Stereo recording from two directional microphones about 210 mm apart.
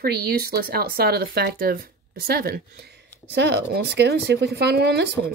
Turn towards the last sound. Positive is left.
turn(degrees=-50)  # may be behind; listen again after turning